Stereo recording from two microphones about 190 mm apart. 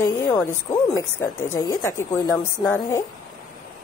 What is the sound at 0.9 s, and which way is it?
Speech, 15° left (ahead or behind).